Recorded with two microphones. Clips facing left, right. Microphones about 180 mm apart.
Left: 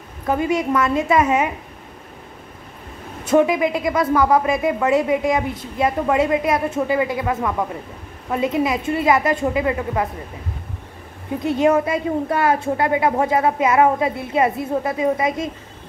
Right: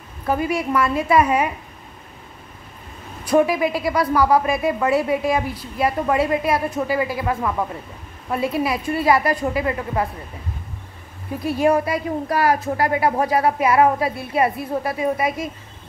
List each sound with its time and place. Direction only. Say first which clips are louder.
0.3 s a woman's voice: left 2 dB; 20° left (ahead or behind)
3.3 s a woman's voice: left 1 dB; 20° left (ahead or behind)
11.3 s a woman's voice: left 2 dB; 25° left (ahead or behind)